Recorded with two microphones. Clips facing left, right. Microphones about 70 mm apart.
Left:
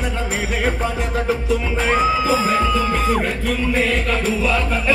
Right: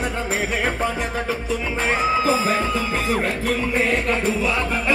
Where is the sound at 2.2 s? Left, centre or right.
Right.